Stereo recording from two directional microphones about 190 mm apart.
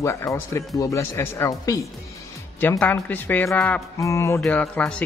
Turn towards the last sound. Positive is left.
turn(degrees=5)  # may be behind; listen again after turning